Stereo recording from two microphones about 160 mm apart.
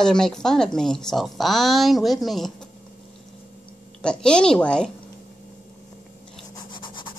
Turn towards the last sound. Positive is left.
turn(degrees=30)  # may be behind; listen again after turning